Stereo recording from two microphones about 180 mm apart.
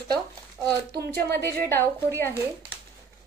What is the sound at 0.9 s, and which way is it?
Speech, 65° right (ahead or behind).